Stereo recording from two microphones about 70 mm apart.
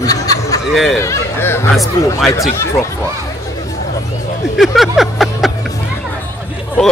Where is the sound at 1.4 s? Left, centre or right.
Left.